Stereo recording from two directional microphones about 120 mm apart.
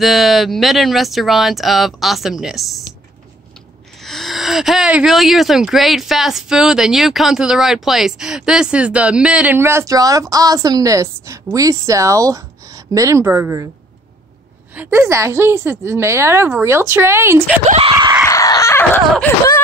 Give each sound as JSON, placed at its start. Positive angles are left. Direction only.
{"t": 0.0, "sound": "speech", "side_deg": 0}
{"t": 4.0, "sound": "speech", "side_deg": 0}
{"t": 14.9, "sound": "a woman's voice", "side_deg": -25}
{"t": 17.9, "sound": "screaming", "side_deg": -30}
{"t": 18.2, "sound": "a sound", "side_deg": 30}